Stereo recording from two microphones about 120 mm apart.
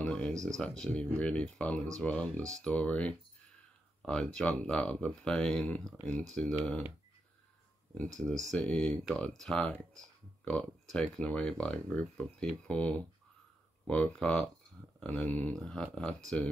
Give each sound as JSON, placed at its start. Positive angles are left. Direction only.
{"t": 0.0, "sound": "a sound", "side_deg": 10}
{"t": 0.3, "sound": "speech", "side_deg": -25}
{"t": 0.6, "sound": "speech", "side_deg": 5}
{"t": 8.2, "sound": "speech", "side_deg": 5}